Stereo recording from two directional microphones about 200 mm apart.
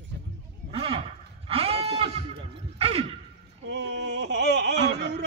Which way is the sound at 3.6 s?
60° right (ahead or behind).